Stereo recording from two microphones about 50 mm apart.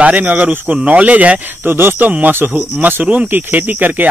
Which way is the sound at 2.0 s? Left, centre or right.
Right.